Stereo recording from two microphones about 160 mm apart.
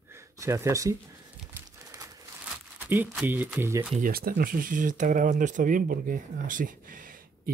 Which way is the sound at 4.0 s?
65° right (ahead or behind).